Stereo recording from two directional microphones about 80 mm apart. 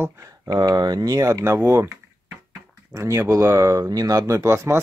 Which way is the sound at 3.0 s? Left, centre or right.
Right.